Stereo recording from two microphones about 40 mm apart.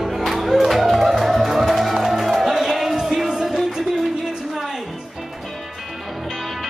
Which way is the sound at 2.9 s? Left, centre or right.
Centre.